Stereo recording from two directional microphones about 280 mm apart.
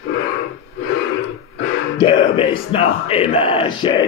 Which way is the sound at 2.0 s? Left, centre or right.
Centre.